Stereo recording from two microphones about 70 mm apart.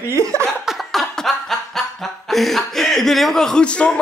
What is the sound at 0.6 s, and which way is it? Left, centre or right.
Chuckle, centre.